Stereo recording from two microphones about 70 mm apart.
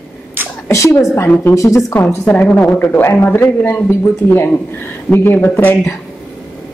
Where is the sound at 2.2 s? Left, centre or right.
Left.